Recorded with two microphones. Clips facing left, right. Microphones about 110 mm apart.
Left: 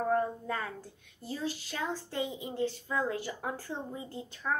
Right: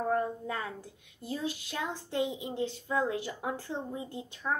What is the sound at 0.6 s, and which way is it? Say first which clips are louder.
A child's voice: even; 15° right (ahead or behind).